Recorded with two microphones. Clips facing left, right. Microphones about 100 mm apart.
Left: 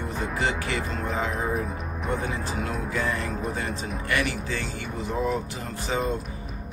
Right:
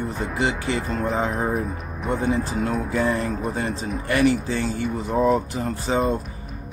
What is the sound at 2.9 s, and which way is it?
Speech, 30° right (ahead or behind).